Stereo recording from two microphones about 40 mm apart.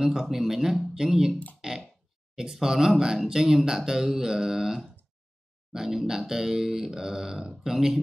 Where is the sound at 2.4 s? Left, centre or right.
Centre.